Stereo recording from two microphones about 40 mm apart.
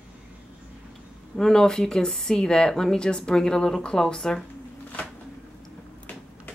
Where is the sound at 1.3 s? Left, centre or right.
Centre.